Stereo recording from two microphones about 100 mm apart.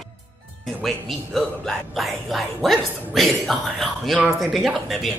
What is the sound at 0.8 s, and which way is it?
Speech, 5° left (ahead or behind).